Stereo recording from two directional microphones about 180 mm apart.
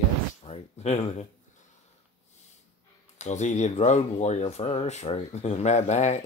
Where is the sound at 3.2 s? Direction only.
40° left (ahead or behind).